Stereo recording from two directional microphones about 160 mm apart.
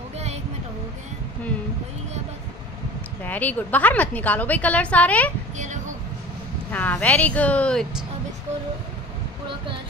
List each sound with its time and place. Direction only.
3.3 s a woman's voice: 10° left (ahead or behind)
6.7 s a woman's voice: 10° left (ahead or behind)